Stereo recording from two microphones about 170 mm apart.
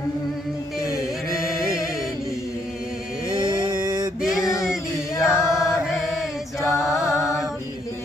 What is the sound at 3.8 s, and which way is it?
Male singing, 25° right (ahead or behind).